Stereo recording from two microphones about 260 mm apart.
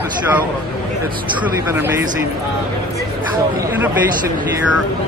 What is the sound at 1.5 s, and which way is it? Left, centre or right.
Speech, centre.